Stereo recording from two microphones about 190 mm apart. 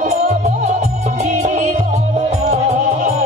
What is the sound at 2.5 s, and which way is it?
Music, 35° right (ahead or behind).